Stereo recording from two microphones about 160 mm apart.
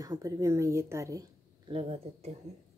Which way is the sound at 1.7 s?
40° right (ahead or behind).